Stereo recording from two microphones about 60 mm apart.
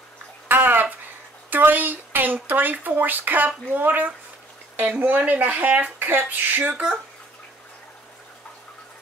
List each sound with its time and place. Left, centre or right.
0.5 s bathtub: right
1.5 s a sound: right
2.4 s speech: right